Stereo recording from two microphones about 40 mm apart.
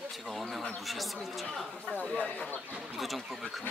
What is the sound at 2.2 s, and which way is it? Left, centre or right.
Speech, left.